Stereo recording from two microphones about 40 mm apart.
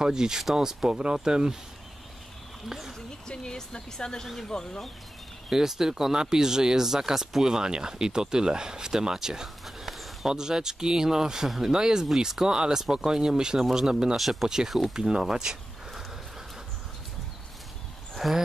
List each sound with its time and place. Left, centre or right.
0.0 s speech: centre
3.3 s speech: centre
5.5 s speech: centre
9.7 s a sound: centre
10.3 s speech: centre
14.1 s speech: centre
15.0 s speech: centre
18.1 s a sound: centre